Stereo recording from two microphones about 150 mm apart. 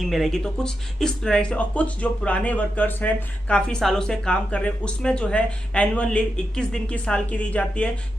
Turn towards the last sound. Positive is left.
turn(degrees=10)  # may be behind; listen again after turning